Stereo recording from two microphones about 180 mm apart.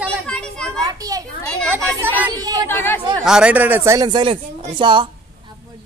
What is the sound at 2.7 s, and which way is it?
Speech, 10° left (ahead or behind).